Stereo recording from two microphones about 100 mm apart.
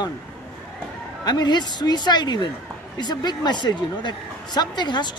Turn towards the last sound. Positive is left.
turn(degrees=45)  # may be behind; listen again after turning